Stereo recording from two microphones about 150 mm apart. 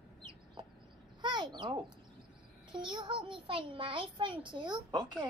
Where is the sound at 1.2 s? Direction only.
30° right (ahead or behind).